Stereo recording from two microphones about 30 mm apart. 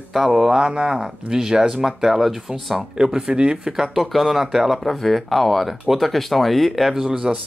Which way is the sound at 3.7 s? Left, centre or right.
Centre.